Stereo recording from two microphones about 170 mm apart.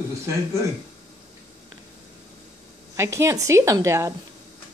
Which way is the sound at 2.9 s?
15° right (ahead or behind).